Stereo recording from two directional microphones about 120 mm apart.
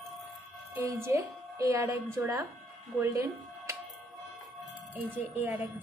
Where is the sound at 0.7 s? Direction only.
20° right (ahead or behind).